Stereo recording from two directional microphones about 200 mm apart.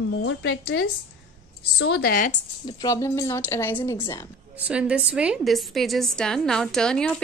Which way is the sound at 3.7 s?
25° left (ahead or behind).